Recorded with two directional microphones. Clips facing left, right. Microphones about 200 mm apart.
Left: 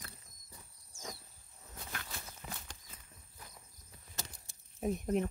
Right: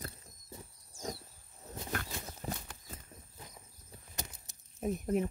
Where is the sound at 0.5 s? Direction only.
25° right (ahead or behind).